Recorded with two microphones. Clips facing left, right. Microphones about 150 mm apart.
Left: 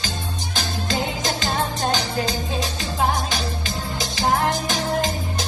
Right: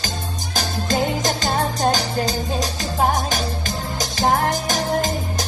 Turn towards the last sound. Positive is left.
turn(degrees=-45)  # may be behind; listen again after turning